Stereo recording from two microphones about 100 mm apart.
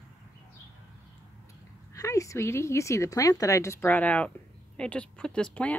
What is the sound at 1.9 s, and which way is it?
A woman's voice, 35° left (ahead or behind).